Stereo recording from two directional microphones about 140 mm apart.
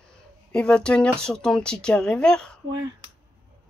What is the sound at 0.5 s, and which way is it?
Speech, 5° left (ahead or behind).